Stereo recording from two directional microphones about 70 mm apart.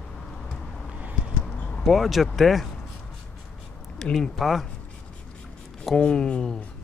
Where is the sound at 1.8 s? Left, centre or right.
Centre.